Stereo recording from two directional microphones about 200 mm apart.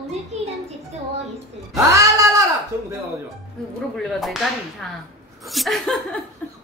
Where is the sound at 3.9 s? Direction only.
Centre (ahead or behind).